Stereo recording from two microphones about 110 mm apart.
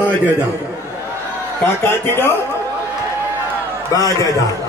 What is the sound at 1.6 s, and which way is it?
Speech, 20° left (ahead or behind).